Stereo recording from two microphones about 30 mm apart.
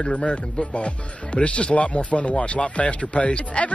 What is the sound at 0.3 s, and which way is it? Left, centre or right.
Speech, left.